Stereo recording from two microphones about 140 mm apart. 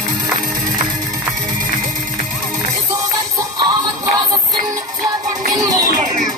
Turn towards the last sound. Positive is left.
turn(degrees=-25)  # may be behind; listen again after turning